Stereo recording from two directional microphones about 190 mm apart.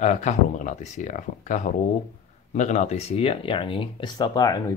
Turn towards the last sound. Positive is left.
turn(degrees=20)  # may be behind; listen again after turning